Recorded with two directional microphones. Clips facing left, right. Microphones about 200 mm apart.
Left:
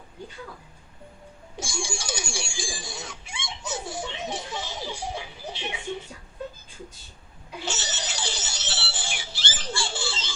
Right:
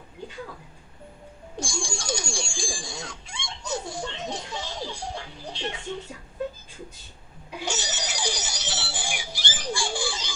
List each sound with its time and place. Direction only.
1.6 s telephone bell ringing: 5° left (ahead or behind)
7.6 s music: 15° right (ahead or behind)